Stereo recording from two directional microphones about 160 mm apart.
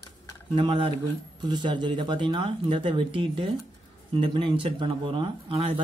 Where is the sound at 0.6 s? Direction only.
35° right (ahead or behind).